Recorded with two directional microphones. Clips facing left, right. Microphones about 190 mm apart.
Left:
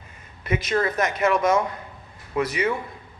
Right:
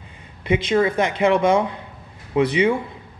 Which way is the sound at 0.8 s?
30° right (ahead or behind).